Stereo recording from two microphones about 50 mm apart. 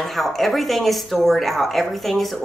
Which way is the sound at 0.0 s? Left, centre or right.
Centre.